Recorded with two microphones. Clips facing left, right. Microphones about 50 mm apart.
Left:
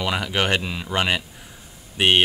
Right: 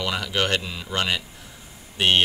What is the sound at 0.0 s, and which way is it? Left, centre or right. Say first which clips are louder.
Speech: left 2 dB; centre.